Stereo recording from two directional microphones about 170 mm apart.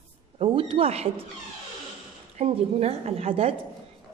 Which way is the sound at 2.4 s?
40° right (ahead or behind).